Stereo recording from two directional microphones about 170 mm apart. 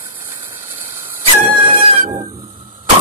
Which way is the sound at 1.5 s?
30° right (ahead or behind).